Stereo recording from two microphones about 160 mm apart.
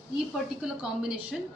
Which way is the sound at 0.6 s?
5° right (ahead or behind).